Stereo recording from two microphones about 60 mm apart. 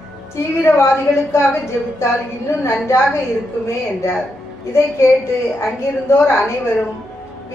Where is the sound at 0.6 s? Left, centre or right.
Left.